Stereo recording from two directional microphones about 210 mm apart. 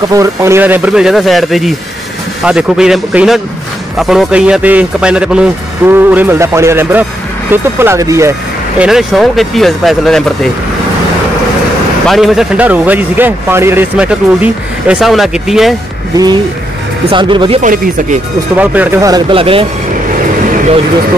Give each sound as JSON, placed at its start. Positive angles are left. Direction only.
{"t": 0.1, "sound": "a man's voice", "side_deg": -15}
{"t": 8.8, "sound": "speech", "side_deg": 0}
{"t": 12.1, "sound": "speech", "side_deg": 0}
{"t": 17.1, "sound": "speech", "side_deg": -25}
{"t": 17.6, "sound": "speech", "side_deg": -35}
{"t": 18.6, "sound": "a man's voice", "side_deg": -10}